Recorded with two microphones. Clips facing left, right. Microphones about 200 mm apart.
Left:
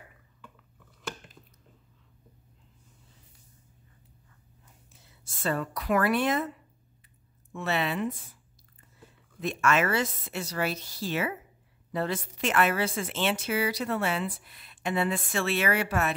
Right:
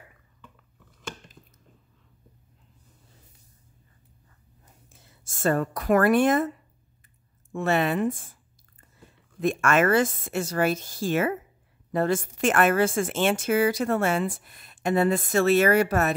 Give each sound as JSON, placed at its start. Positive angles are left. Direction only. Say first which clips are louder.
{"t": 4.9, "sound": "speech", "louder": "right 2 dB", "side_deg": -45}
{"t": 7.5, "sound": "a woman's voice", "louder": "right 6 dB", "side_deg": -50}
{"t": 9.4, "sound": "a woman's voice", "louder": "right 4 dB", "side_deg": -50}